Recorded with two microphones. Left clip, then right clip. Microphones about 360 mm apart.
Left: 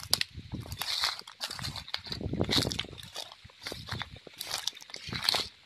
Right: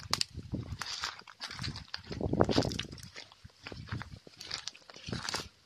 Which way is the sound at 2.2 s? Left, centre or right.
Right.